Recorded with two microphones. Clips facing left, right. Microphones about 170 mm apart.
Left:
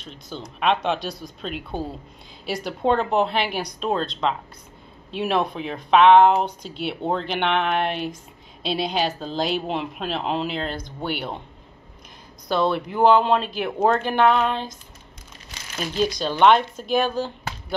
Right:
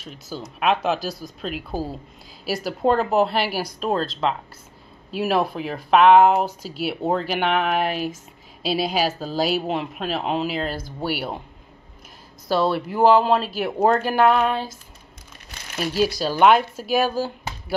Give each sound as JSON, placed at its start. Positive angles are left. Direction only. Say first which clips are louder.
{"t": 0.0, "sound": "speech", "louder": "right 2 dB", "side_deg": -5}
{"t": 12.4, "sound": "speech", "louder": "right 1 dB", "side_deg": -5}
{"t": 15.8, "sound": "speech", "louder": "right 2 dB", "side_deg": -5}